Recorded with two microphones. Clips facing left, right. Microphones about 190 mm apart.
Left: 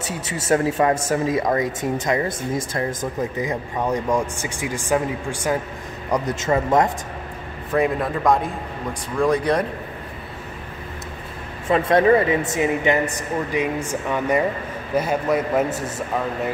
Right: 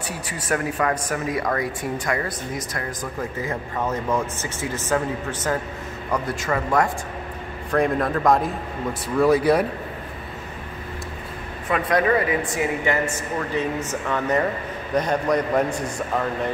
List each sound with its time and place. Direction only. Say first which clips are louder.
0.0 s speech: left 3 dB; 25° left (ahead or behind)
7.7 s a man's voice: even; 5° left (ahead or behind)
11.7 s a man's voice: left 4 dB; 25° left (ahead or behind); by 16.3 s 5° left (ahead or behind)